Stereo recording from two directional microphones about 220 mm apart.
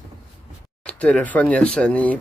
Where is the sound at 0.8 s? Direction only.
5° left (ahead or behind).